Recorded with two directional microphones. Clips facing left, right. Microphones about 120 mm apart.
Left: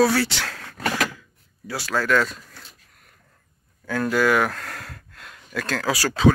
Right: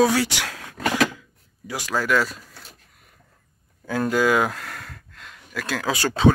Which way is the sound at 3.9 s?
20° right (ahead or behind).